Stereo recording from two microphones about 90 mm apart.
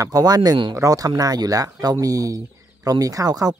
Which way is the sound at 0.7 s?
40° right (ahead or behind).